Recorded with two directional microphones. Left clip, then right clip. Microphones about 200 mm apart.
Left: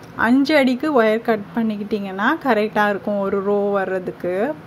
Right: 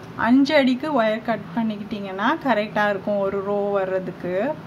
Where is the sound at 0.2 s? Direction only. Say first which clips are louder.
Left 2 dB; 25° left (ahead or behind).